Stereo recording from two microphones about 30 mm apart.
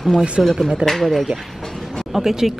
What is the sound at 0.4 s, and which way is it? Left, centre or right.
Speech, centre.